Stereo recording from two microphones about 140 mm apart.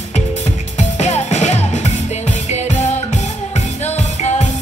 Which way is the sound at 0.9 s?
50° left (ahead or behind).